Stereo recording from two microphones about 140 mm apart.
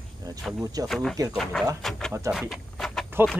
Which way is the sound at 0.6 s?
25° right (ahead or behind).